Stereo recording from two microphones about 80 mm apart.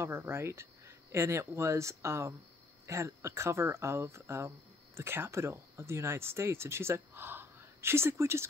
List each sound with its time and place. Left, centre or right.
0.0 s speech: right